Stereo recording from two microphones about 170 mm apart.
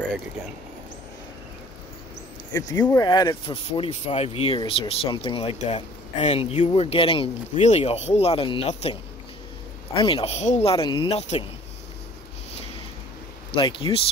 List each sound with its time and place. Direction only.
3.0 s speech: 25° left (ahead or behind)
9.9 s speech: 30° left (ahead or behind)
13.5 s speech: 30° left (ahead or behind)